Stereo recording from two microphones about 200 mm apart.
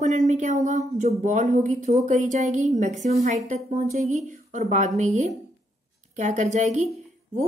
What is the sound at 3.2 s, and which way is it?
A woman's voice, 40° right (ahead or behind).